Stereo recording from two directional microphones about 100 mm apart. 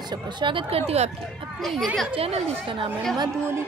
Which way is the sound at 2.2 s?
85° right.